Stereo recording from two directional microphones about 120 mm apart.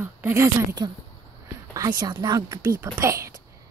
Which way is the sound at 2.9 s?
25° right (ahead or behind).